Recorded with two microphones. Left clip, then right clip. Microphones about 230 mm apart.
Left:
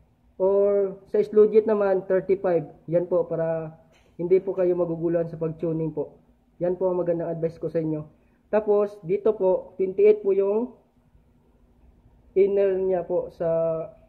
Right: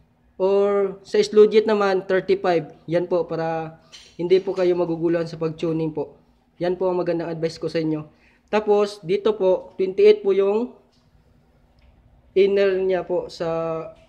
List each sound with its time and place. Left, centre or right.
0.4 s speech: right
12.4 s speech: right